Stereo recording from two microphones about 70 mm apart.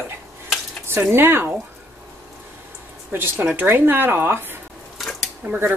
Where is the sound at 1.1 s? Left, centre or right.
Right.